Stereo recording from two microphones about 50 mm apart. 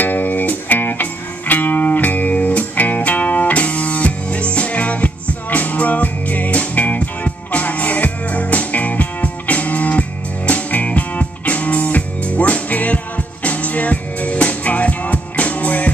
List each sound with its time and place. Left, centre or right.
0.0 s music: left